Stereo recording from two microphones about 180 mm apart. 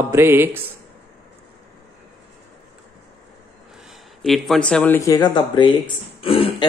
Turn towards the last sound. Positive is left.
turn(degrees=30)  # may be behind; listen again after turning